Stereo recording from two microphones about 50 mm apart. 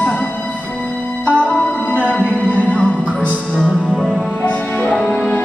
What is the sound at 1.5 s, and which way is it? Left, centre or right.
Music, left.